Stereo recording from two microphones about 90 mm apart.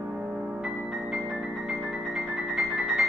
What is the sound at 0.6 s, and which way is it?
Music, 5° right (ahead or behind).